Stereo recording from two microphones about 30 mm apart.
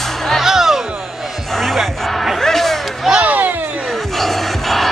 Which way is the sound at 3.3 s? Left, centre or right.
Right.